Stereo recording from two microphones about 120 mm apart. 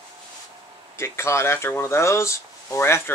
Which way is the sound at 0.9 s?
25° left (ahead or behind).